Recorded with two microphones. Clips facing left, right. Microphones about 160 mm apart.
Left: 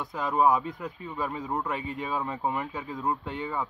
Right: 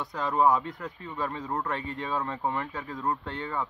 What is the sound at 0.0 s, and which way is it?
Speech, 20° left (ahead or behind).